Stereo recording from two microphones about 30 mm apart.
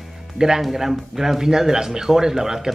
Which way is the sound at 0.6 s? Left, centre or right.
Centre.